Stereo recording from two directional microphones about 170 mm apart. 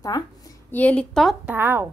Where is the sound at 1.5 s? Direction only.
10° right (ahead or behind).